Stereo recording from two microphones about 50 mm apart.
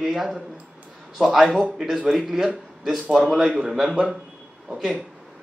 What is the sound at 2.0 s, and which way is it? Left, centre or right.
A man's voice, centre.